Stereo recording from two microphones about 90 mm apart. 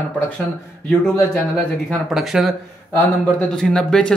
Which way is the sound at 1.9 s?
Centre (ahead or behind).